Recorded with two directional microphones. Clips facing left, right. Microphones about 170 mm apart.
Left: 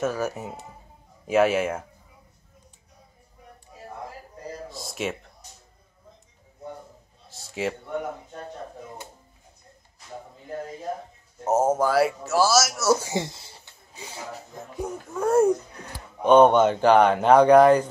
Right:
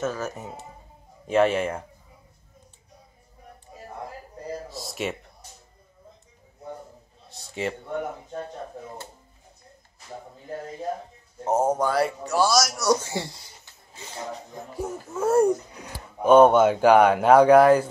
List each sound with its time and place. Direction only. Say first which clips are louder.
0.0 s speech: left 2 dB; 10° left (ahead or behind)
4.6 s speech: left 3 dB; centre (ahead or behind)
7.2 s a sound: left 1 dB; centre (ahead or behind)
11.4 s speech: left 1 dB; 5° left (ahead or behind)
13.1 s speech: left 3 dB; 20° left (ahead or behind)
13.9 s a sound: right 1 dB; 10° left (ahead or behind)
14.7 s speech: even; 5° right (ahead or behind)